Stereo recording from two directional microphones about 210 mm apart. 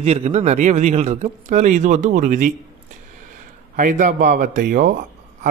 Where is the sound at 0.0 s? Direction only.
30° right (ahead or behind).